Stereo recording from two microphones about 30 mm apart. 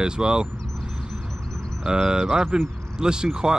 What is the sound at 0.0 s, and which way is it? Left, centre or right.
Speech, right.